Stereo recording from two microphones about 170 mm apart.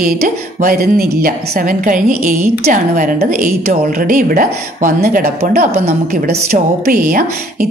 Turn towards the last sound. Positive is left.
turn(degrees=-55)  # may be behind; listen again after turning